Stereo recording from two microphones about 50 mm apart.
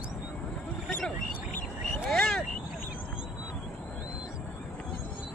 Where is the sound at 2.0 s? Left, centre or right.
Centre.